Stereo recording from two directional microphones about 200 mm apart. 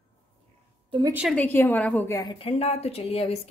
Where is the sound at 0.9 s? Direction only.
20° right (ahead or behind).